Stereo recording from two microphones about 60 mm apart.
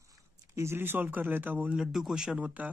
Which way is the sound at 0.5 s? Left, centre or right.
Right.